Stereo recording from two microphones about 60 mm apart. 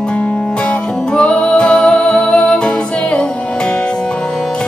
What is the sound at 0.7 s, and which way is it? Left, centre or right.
Music, centre.